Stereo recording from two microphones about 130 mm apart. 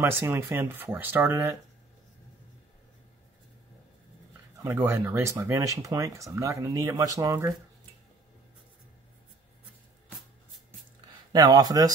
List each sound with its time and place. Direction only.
0.0 s speech: 15° right (ahead or behind)
4.6 s speech: 20° right (ahead or behind)
11.3 s speech: 30° right (ahead or behind)